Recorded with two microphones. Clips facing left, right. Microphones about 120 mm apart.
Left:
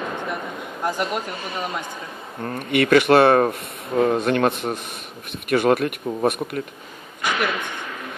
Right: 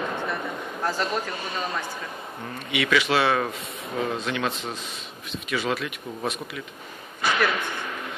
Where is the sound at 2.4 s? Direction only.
50° left (ahead or behind).